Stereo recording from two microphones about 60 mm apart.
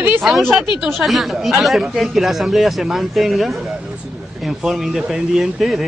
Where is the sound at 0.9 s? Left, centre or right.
Centre.